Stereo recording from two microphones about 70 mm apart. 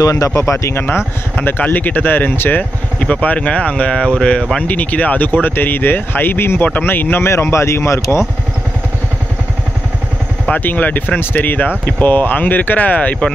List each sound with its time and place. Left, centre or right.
0.0 s speech: left
0.3 s speech: left
3.0 s speech: centre
4.6 s speech: left
10.5 s speech: left